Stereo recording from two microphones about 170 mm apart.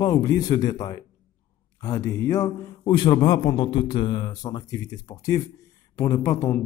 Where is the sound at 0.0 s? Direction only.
20° left (ahead or behind).